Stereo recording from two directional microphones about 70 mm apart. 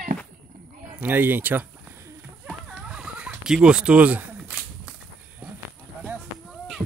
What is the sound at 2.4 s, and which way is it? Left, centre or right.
Chicken, centre.